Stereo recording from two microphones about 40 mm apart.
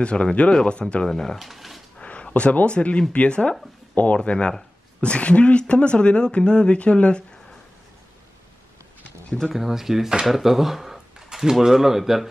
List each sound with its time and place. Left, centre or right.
0.0 s speech: left
1.0 s speech: centre
2.0 s speech: left
9.5 s speech: centre